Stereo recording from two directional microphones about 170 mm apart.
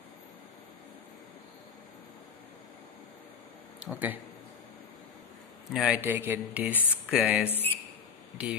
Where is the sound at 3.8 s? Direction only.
10° right (ahead or behind).